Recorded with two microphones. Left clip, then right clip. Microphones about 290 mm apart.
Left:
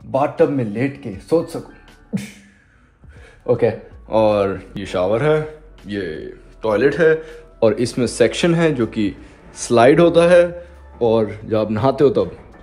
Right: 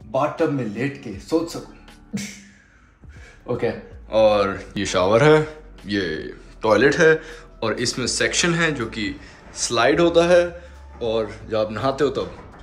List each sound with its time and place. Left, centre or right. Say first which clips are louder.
0.1 s speech: left 5 dB; left
3.4 s speech: left 7 dB; centre